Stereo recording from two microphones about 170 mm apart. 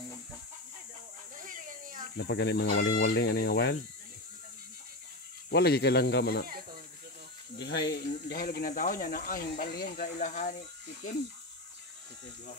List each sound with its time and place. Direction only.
1.3 s a sound: 50° right (ahead or behind)
2.1 s speech: 80° left
5.5 s speech: 75° left (ahead or behind)
6.4 s speech: 60° right (ahead or behind)
7.5 s speech: 85° left
8.3 s speech: 60° left (ahead or behind)